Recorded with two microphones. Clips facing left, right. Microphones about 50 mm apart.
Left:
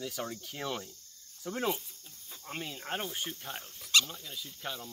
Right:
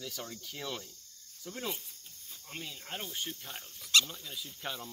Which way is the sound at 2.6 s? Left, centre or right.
Left.